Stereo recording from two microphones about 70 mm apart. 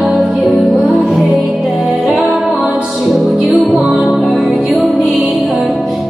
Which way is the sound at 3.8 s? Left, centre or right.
Centre.